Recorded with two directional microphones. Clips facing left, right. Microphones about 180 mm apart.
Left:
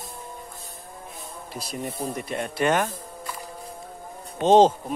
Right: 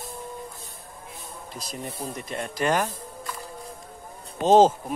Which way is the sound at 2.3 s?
30° left (ahead or behind).